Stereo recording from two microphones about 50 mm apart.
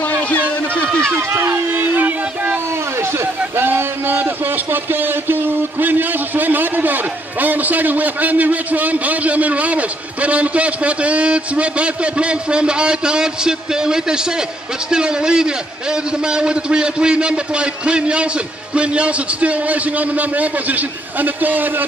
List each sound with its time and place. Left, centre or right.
1.3 s a man's voice: right
3.5 s a sound: right
4.9 s a man's voice: right